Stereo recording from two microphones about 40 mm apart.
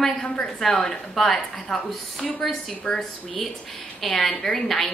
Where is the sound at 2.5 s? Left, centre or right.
Centre.